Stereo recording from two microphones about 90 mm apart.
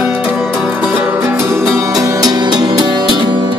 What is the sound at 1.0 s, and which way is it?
Music, 25° right (ahead or behind).